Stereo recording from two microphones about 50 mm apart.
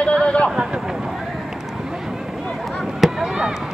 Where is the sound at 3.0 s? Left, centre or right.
Centre.